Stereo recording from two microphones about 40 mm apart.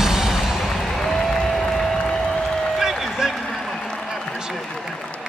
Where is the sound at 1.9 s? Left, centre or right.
Centre.